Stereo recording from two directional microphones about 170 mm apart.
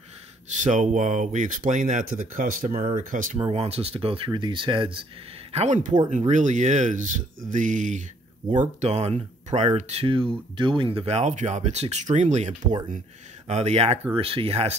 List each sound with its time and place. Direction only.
0.5 s speech: 45° right (ahead or behind)
3.3 s speech: 35° right (ahead or behind)
5.5 s speech: 40° right (ahead or behind)
8.5 s speech: 35° right (ahead or behind)